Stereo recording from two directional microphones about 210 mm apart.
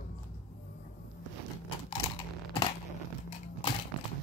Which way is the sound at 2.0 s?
25° left (ahead or behind).